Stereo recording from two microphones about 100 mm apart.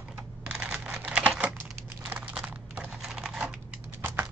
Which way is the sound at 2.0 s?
15° right (ahead or behind).